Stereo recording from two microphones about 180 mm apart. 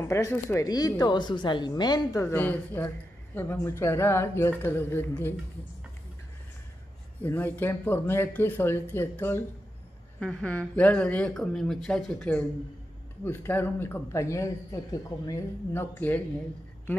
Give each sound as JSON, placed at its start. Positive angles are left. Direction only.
{"t": 0.1, "sound": "speech", "side_deg": 15}
{"t": 7.2, "sound": "speech", "side_deg": 10}